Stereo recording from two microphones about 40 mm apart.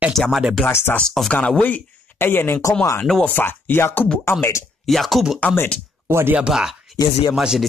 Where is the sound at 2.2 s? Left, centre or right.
Left.